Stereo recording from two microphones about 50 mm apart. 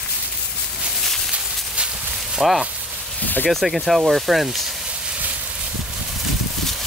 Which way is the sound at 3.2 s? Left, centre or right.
Left.